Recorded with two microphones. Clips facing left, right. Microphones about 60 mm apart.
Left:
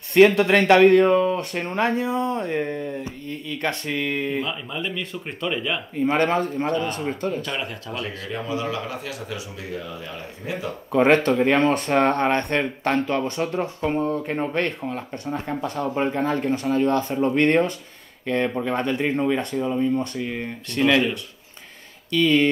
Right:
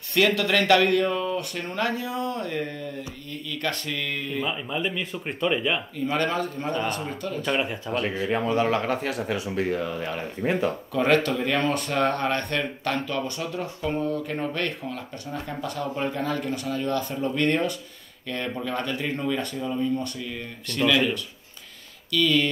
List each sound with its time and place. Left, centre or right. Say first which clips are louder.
0.1 s speech: left 7 dB; left
4.5 s speech: right 1 dB; centre
5.9 s speech: left 9 dB; left
8.3 s speech: right 4 dB; right
10.9 s speech: left 6 dB; left